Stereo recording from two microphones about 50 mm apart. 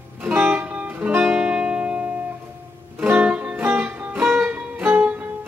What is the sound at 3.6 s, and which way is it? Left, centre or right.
Music, right.